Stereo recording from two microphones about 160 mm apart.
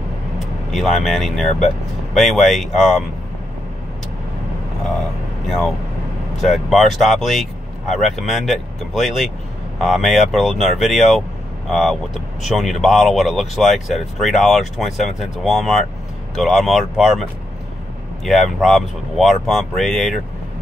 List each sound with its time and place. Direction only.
0.7 s speech: centre (ahead or behind)
6.4 s speech: centre (ahead or behind)